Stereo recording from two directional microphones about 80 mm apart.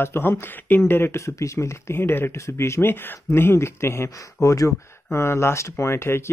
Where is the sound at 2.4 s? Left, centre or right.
Left.